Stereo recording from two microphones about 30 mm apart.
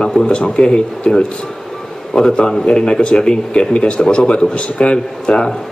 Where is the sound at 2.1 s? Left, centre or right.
Centre.